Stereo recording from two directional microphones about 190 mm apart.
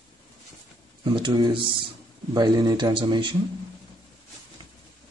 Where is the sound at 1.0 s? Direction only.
25° right (ahead or behind).